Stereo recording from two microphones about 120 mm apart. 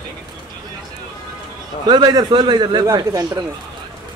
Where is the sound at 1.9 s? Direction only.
35° right (ahead or behind).